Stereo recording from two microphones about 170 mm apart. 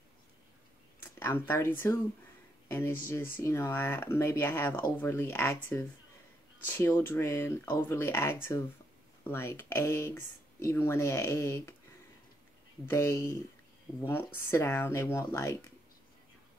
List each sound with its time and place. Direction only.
1.0 s speech: 15° left (ahead or behind)
12.8 s speech: 15° left (ahead or behind)